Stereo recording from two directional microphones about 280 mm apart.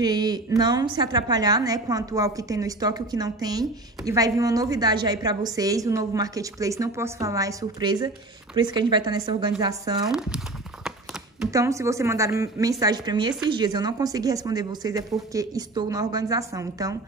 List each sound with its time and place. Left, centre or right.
0.0 s a woman's voice: centre
10.0 s crumpling: centre
11.5 s a woman's voice: centre